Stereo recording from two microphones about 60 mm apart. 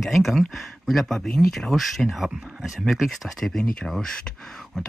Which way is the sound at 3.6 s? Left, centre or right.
Centre.